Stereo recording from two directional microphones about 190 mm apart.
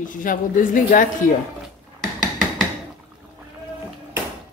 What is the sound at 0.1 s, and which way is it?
Speech, 45° left (ahead or behind).